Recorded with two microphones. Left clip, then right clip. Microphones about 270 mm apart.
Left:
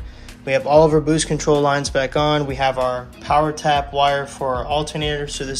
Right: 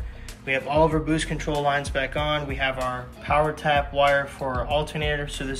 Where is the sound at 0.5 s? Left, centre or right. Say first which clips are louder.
Left 8 dB; centre.